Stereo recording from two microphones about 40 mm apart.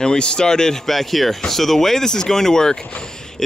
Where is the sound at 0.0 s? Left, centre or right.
Left.